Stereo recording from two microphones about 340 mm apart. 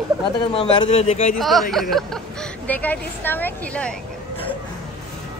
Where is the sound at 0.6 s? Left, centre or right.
Centre.